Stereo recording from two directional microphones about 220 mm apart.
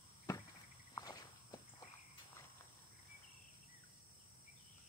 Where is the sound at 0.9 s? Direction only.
15° left (ahead or behind).